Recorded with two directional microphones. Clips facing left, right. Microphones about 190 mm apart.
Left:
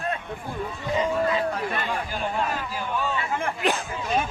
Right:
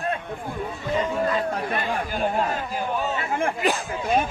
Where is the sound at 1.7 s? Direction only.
40° right (ahead or behind).